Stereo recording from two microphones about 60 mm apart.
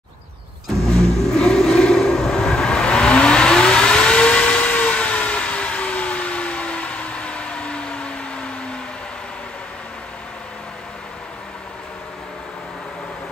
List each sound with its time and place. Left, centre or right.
0.9 s vehicle: centre